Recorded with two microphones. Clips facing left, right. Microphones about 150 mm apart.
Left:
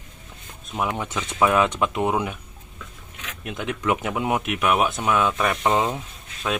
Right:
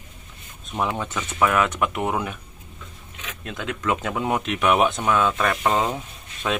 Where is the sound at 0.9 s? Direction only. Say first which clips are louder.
Left 1 dB; 15° left (ahead or behind).